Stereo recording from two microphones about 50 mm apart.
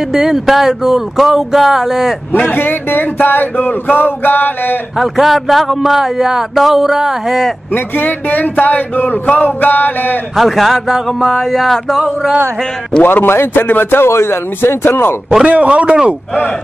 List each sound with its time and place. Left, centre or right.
0.1 s speech: centre
2.4 s a man's voice: left
4.9 s a man's voice: centre
7.7 s speech: left
10.3 s a man's voice: centre
12.0 s speech: centre
13.0 s a man's voice: left
15.4 s a man's voice: right